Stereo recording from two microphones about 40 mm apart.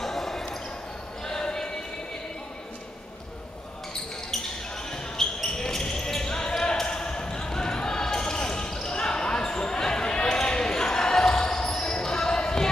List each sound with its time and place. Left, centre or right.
0.0 s basketball bounce: centre
1.2 s music: centre
4.9 s basketball bounce: centre